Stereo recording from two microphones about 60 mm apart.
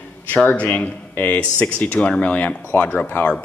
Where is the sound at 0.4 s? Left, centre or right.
Left.